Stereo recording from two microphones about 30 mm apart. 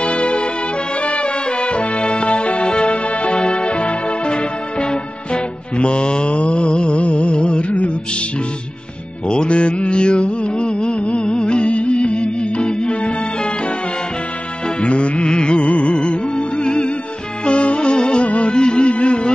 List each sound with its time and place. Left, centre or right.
0.0 s music: left
6.3 s a sound: left
9.3 s mantra: left
14.8 s music: left
15.6 s music: left
18.2 s music: left
18.5 s music: left
18.9 s music: left